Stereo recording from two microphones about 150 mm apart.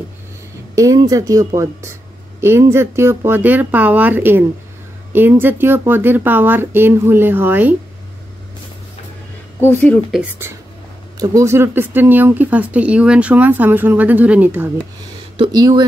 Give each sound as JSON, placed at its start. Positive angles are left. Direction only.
{"t": 0.7, "sound": "speech", "side_deg": -20}
{"t": 9.6, "sound": "speech", "side_deg": 15}
{"t": 11.1, "sound": "speech", "side_deg": -20}
{"t": 15.3, "sound": "speech", "side_deg": -30}